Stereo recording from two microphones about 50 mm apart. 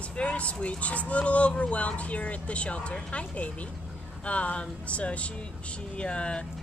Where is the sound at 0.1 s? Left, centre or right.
Left.